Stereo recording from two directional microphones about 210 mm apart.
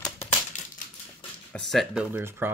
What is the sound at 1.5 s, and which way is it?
Speech, centre (ahead or behind).